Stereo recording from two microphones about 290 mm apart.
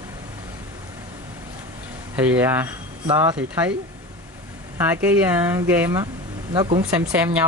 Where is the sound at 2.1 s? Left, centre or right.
Centre.